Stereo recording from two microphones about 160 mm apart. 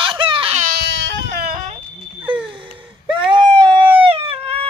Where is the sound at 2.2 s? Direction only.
5° right (ahead or behind).